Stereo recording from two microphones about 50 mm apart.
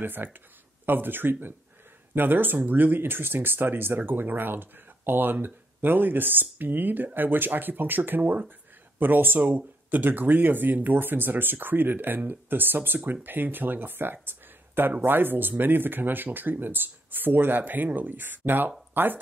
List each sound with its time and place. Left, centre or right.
0.0 s speech: right